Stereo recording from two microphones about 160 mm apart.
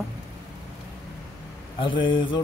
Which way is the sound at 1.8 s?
30° left (ahead or behind).